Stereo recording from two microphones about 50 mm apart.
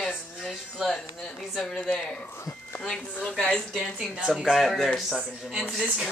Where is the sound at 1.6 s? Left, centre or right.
Centre.